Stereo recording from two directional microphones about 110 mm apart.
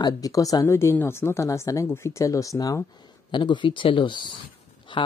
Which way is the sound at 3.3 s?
45° left (ahead or behind).